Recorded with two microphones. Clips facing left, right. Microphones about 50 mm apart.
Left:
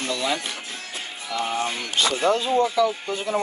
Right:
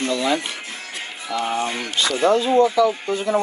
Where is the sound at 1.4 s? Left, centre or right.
Centre.